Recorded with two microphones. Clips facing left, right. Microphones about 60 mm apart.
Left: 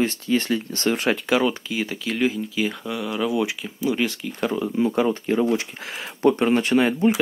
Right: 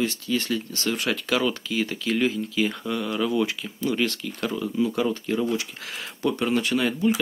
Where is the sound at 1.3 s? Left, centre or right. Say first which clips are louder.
Even; centre.